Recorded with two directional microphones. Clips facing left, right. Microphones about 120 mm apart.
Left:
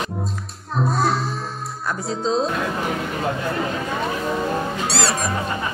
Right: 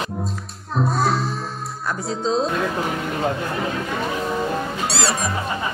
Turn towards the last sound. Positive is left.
turn(degrees=0)  # may be behind; listen again after turning